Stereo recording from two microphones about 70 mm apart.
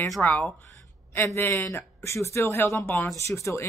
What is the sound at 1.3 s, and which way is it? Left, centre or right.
Speech, left.